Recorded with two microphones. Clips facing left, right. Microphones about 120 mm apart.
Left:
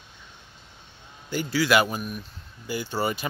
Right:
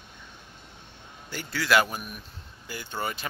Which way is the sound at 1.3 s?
5° left (ahead or behind).